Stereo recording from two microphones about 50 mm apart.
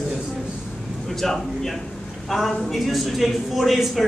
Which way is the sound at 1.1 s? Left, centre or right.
Centre.